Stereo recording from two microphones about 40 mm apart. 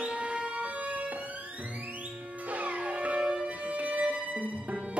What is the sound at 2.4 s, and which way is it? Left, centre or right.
Music, right.